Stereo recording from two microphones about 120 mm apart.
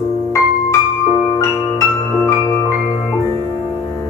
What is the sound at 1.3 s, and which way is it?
Music, 25° left (ahead or behind).